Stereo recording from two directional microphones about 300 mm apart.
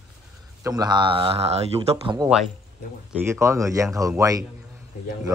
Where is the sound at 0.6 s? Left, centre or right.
Centre.